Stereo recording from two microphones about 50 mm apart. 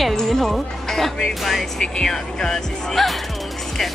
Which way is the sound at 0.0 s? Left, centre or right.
Centre.